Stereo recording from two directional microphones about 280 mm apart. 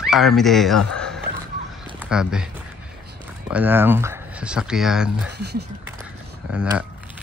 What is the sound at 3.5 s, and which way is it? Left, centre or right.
Speech, centre.